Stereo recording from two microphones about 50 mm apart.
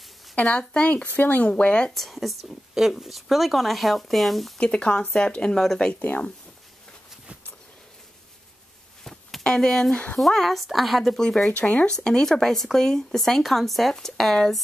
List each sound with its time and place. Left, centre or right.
0.4 s speech: left
1.0 s speech: left
2.0 s a woman's voice: centre
4.6 s speech: centre
5.9 s speech: left
9.0 s a sound: centre
9.4 s a woman's voice: centre
11.1 s speech: centre
11.5 s speech: left
12.0 s speech: centre